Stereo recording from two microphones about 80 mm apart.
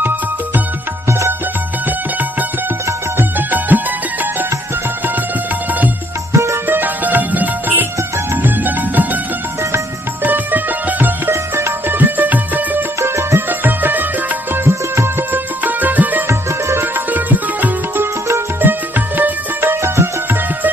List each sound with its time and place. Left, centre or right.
3.2 s music: right
6.3 s music: right
6.7 s music: right
10.2 s music: right
16.3 s music: right
17.1 s sitar: right
18.3 s music: right